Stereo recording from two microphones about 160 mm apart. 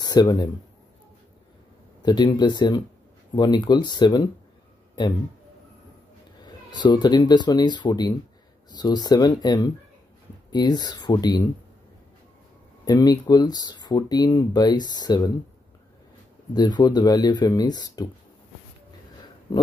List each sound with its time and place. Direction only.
0.0 s speech: 25° left (ahead or behind)
2.0 s speech: 25° left (ahead or behind)
6.7 s speech: 25° left (ahead or behind)
12.8 s speech: 25° left (ahead or behind)
16.5 s speech: 25° left (ahead or behind)
19.5 s speech: 25° left (ahead or behind)